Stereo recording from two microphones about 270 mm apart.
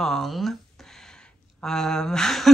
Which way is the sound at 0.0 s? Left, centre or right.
Centre.